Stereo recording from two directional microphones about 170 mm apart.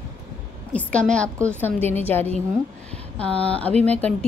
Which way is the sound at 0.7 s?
5° left (ahead or behind).